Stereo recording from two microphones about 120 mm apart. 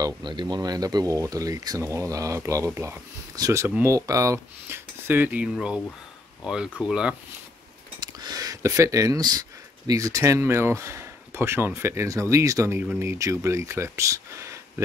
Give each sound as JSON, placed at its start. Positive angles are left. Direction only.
{"t": 0.0, "sound": "speech", "side_deg": -40}
{"t": 3.6, "sound": "speech", "side_deg": -15}
{"t": 3.9, "sound": "speech", "side_deg": -30}
{"t": 8.0, "sound": "a sound", "side_deg": -35}
{"t": 9.8, "sound": "speech", "side_deg": -30}